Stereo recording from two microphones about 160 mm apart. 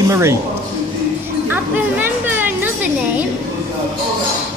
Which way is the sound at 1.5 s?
10° right (ahead or behind).